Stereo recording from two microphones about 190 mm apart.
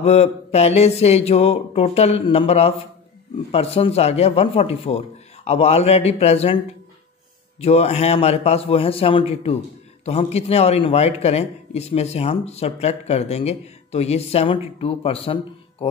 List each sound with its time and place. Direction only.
0.0 s a man's voice: 35° left (ahead or behind)
7.6 s a man's voice: 35° left (ahead or behind)